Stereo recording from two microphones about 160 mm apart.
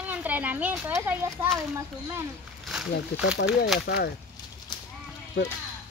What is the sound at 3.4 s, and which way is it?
Speech, centre (ahead or behind).